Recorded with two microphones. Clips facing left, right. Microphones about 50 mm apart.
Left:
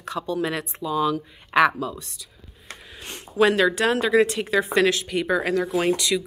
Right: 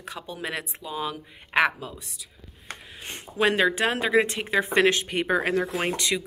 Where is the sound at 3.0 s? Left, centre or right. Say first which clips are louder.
Left 4 dB; right.